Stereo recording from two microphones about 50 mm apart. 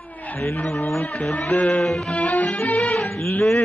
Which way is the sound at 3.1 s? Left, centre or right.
Left.